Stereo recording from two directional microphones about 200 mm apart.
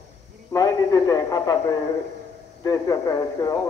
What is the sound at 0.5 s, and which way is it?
Radio, 20° left (ahead or behind).